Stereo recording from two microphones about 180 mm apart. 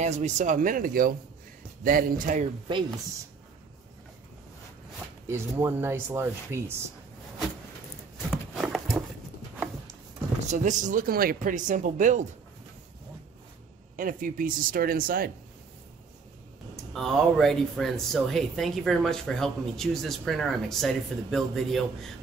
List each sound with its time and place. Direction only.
0.0 s speech: 40° right (ahead or behind)
5.3 s speech: 15° right (ahead or behind)
8.5 s a sound: 5° right (ahead or behind)
10.4 s speech: 40° right (ahead or behind)
13.9 s speech: 50° right (ahead or behind)
16.7 s speech: centre (ahead or behind)